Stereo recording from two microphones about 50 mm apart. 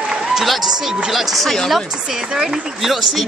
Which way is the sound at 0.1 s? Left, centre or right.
Centre.